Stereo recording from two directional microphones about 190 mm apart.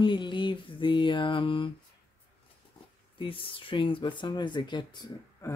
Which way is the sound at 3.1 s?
30° left (ahead or behind).